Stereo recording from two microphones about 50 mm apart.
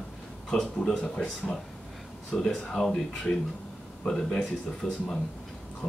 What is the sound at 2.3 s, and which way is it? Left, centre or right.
Speech, centre.